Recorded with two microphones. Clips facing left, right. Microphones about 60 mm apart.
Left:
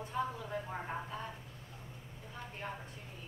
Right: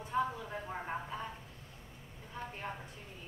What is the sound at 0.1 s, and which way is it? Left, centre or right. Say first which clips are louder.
Speech: right 3 dB; centre.